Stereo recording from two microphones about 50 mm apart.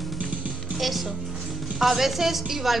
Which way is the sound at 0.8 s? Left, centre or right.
Centre.